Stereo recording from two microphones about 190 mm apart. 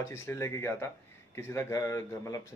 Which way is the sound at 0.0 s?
15° left (ahead or behind).